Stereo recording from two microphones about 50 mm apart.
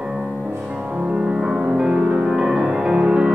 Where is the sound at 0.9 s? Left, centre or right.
Right.